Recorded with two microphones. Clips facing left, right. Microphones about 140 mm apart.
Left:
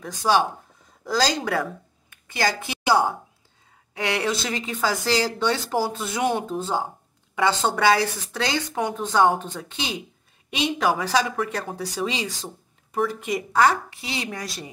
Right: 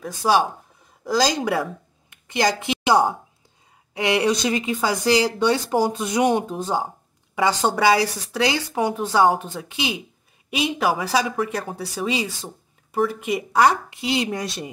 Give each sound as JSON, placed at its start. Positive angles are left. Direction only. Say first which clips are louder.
{"t": 0.0, "sound": "a woman's voice", "louder": "right 2 dB", "side_deg": -5}
{"t": 14.3, "sound": "speech", "louder": "right 6 dB", "side_deg": -25}